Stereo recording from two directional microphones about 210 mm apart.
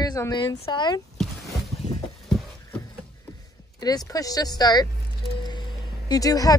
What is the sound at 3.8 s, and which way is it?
A woman's voice, 20° left (ahead or behind).